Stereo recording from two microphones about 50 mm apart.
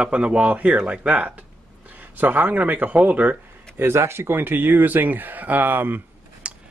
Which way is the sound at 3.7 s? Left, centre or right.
Right.